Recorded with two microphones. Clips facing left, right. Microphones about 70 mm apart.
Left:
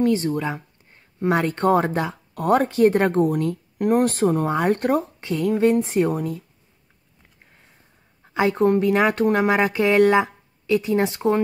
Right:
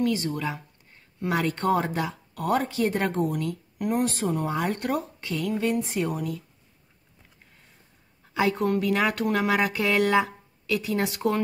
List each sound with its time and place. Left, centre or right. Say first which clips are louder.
0.0 s speech: left 5 dB; left
8.3 s speech: left 5 dB; left